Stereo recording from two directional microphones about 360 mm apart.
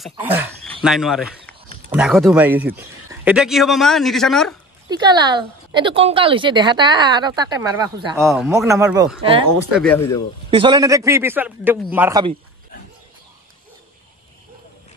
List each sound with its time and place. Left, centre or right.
0.0 s speech: centre
4.8 s a woman's voice: centre
9.8 s speech: centre
10.5 s a woman's voice: centre